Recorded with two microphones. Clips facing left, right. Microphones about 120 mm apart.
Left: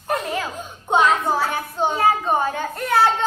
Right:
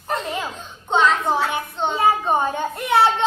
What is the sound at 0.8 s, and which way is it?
A child's voice, 5° left (ahead or behind).